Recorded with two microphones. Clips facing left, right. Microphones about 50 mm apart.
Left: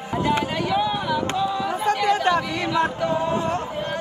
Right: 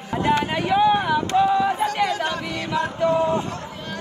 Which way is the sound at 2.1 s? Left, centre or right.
Left.